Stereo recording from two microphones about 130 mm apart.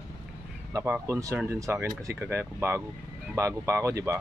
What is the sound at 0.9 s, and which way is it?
Speech, 20° right (ahead or behind).